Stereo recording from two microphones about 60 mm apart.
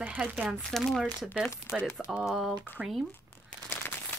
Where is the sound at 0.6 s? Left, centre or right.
Centre.